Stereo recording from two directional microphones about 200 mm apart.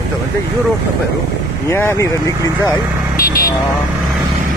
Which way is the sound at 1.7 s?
10° left (ahead or behind).